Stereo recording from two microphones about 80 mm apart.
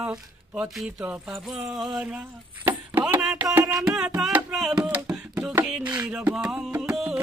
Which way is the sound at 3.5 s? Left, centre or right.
Right.